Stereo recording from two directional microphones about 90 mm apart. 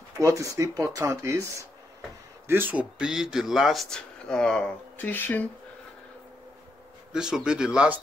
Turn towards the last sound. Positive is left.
turn(degrees=-10)  # may be behind; listen again after turning